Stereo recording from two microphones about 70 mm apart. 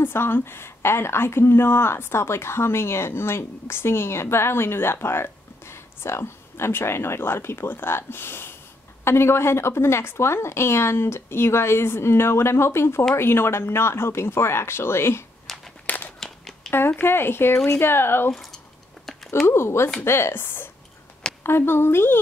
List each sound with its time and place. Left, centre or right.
0.0 s a woman's voice: left
15.5 s a sound: centre
16.7 s a woman's voice: left
18.3 s speech: centre
19.4 s a woman's voice: left